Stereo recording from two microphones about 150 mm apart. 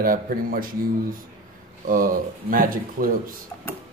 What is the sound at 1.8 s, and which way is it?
Speech, 70° right (ahead or behind).